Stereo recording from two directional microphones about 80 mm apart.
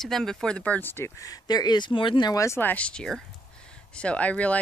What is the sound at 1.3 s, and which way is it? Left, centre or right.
Speech, left.